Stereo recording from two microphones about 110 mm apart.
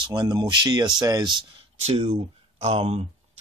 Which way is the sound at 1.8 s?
70° right (ahead or behind).